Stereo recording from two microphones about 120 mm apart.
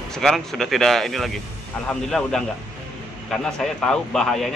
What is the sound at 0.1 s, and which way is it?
A man's voice, 5° left (ahead or behind).